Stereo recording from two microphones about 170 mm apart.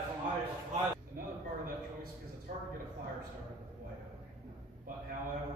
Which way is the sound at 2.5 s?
45° right (ahead or behind).